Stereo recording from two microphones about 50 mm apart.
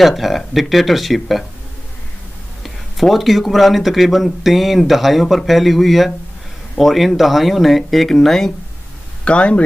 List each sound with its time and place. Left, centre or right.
0.0 s speech: centre
2.6 s speech: centre
9.2 s speech: left